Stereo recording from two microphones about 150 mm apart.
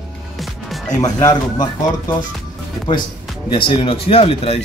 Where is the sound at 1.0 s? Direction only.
25° left (ahead or behind).